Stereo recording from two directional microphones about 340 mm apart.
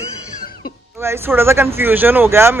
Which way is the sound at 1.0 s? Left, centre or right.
Centre.